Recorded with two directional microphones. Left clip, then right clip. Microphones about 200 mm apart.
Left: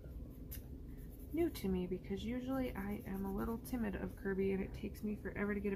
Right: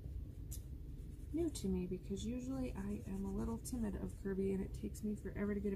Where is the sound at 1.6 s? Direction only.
Centre (ahead or behind).